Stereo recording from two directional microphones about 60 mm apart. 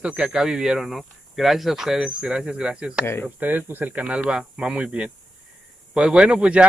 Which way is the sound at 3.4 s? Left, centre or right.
Right.